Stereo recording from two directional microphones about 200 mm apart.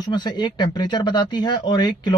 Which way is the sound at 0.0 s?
20° left (ahead or behind).